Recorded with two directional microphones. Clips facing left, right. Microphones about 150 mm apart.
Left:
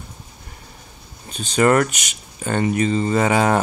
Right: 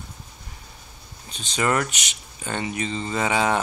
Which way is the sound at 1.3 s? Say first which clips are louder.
Left 7 dB; 50° left (ahead or behind).